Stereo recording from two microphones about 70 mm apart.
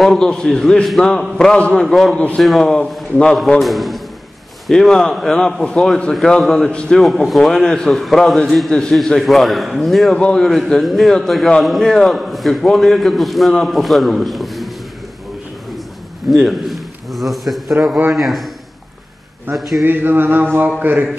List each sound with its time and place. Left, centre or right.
0.0 s a man's voice: centre
1.9 s a man's voice: centre
2.1 s a man's voice: centre
7.0 s a man's voice: centre
16.3 s a man's voice: centre
19.5 s a man's voice: centre
19.8 s a sound: right